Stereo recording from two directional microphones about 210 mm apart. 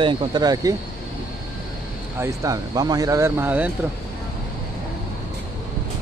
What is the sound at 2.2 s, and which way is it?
Speech, 15° right (ahead or behind).